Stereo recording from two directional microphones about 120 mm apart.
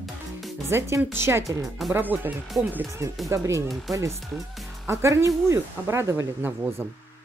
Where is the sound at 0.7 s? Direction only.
20° right (ahead or behind).